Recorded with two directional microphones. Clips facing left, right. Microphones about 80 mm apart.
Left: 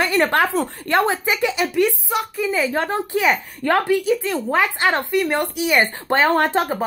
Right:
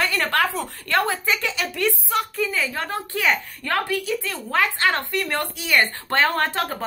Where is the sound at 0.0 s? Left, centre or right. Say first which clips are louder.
Left 4 dB; left.